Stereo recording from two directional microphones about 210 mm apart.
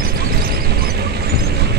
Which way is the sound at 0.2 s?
45° right (ahead or behind).